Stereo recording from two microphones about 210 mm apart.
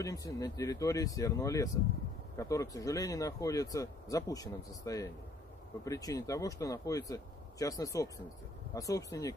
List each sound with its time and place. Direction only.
0.0 s speech: 15° left (ahead or behind)